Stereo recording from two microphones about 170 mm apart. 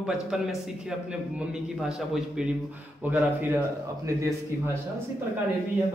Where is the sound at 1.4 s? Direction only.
5° right (ahead or behind).